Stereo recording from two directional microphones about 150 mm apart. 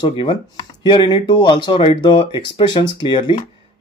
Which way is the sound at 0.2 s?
35° left (ahead or behind).